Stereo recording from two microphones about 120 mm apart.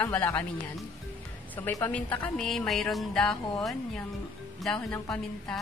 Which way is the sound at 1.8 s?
15° left (ahead or behind).